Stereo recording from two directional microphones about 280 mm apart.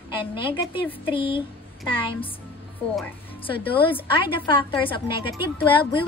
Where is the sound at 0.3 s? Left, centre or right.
Centre.